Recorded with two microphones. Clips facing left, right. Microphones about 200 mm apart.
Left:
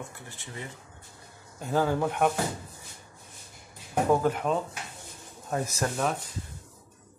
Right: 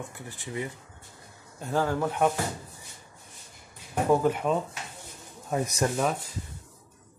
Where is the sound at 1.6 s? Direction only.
5° left (ahead or behind).